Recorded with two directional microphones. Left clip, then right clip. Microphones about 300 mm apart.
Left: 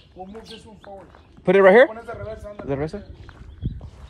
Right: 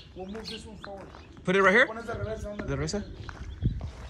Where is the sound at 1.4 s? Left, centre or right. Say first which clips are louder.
Left 9 dB; centre.